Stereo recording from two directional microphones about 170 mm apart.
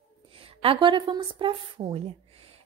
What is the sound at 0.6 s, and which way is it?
A woman's voice, 30° right (ahead or behind).